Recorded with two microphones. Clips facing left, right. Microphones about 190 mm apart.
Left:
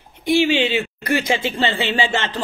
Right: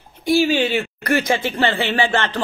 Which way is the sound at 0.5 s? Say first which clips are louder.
Even; 45° right (ahead or behind).